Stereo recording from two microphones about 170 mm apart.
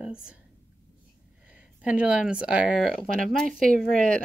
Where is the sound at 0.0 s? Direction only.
5° right (ahead or behind).